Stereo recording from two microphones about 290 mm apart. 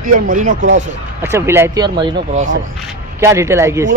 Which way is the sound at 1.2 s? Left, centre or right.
Centre.